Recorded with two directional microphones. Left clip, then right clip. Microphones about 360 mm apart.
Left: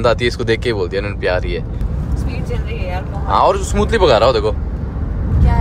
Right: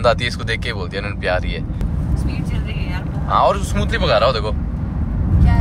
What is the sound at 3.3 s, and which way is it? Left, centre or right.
Speech, centre.